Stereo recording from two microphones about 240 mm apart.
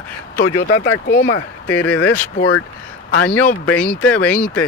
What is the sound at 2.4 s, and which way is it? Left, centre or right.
Speech, left.